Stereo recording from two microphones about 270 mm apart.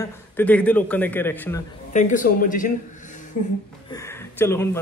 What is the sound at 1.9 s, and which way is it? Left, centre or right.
Speech, left.